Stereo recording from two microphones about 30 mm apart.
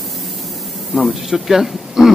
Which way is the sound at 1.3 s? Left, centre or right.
Centre.